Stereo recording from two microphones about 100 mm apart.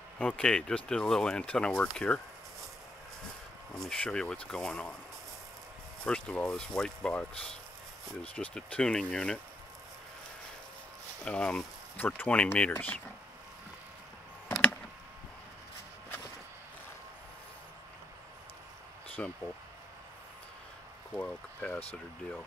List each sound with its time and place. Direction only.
0.2 s speech: 10° left (ahead or behind)
3.7 s speech: 10° left (ahead or behind)
6.0 s speech: 10° left (ahead or behind)
11.2 s speech: 10° left (ahead or behind)
19.2 s speech: 10° left (ahead or behind)
21.1 s speech: 15° left (ahead or behind)